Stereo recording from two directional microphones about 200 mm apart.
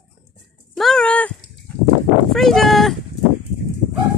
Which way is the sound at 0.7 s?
Centre (ahead or behind).